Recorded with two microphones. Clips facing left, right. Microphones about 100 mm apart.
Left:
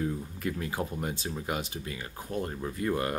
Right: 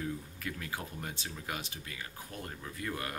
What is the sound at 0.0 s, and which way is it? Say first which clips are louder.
Speech: left 7 dB; 30° left (ahead or behind).